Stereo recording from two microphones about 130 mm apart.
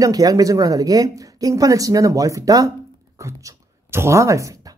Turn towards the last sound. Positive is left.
turn(degrees=-25)  # may be behind; listen again after turning